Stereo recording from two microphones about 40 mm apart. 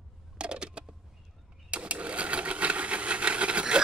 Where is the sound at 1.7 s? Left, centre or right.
Right.